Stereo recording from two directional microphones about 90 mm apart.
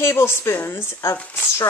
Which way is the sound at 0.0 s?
30° left (ahead or behind).